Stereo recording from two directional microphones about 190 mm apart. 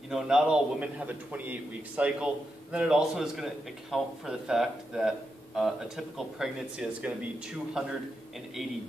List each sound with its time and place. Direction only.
0.1 s a man's voice: 5° right (ahead or behind)